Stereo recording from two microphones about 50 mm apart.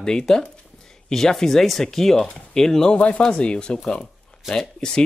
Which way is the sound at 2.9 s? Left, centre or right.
Left.